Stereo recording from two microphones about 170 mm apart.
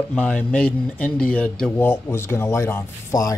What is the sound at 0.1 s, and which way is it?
Speech, 5° left (ahead or behind).